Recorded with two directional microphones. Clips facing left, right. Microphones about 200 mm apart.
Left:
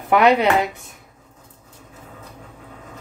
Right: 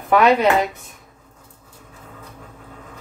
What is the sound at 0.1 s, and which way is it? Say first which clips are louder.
Speech: even; 15° left (ahead or behind).